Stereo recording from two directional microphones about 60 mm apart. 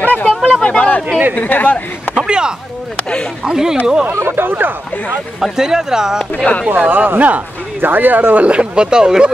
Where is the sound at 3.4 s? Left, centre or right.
Centre.